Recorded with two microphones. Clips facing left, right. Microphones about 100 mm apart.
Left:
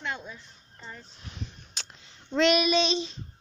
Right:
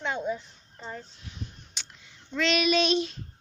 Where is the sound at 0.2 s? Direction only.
25° right (ahead or behind).